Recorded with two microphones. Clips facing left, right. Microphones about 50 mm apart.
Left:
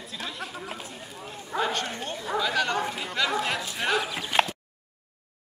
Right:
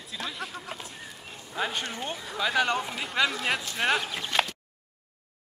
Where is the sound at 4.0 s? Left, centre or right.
Centre.